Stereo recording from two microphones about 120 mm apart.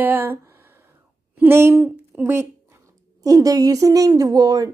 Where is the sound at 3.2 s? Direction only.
30° right (ahead or behind).